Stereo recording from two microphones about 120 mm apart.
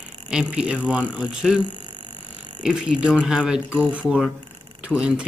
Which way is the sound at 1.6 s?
40° right (ahead or behind).